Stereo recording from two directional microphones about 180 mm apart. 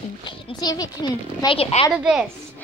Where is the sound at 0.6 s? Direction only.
20° left (ahead or behind).